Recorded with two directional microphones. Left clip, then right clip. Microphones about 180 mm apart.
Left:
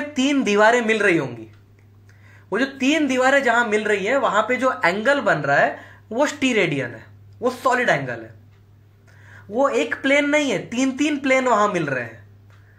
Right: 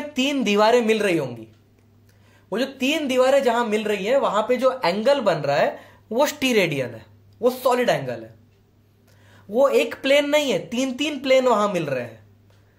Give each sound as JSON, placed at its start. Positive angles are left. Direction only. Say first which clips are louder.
{"t": 0.1, "sound": "speech", "louder": "left 1 dB", "side_deg": -35}
{"t": 2.5, "sound": "speech", "louder": "left 3 dB", "side_deg": -30}
{"t": 9.3, "sound": "speech", "louder": "right 2 dB", "side_deg": -40}